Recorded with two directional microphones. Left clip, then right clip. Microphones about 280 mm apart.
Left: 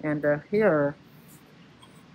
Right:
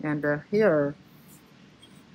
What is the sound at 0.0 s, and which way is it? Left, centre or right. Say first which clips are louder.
Speech: left 2 dB; centre.